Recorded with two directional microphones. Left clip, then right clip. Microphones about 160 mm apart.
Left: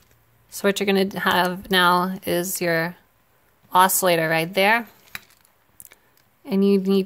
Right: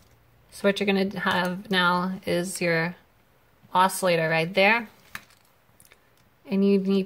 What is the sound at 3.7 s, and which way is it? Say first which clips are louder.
Speech: left 4 dB; 40° left (ahead or behind).